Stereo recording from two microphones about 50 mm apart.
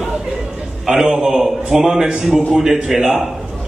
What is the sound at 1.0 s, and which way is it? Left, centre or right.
Speech, centre.